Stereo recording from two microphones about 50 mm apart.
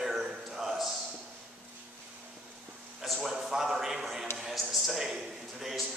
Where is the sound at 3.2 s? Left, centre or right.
Centre.